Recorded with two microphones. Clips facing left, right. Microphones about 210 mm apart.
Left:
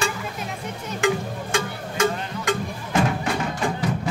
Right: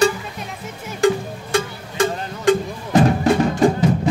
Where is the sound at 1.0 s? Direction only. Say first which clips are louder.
Right 6 dB; 35° right (ahead or behind).